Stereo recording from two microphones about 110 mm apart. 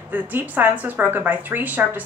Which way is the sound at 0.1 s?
15° right (ahead or behind).